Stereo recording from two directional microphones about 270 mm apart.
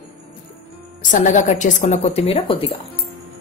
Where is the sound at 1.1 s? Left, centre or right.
Left.